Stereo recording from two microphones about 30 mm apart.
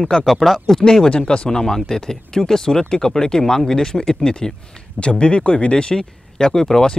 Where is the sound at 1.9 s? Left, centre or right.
Centre.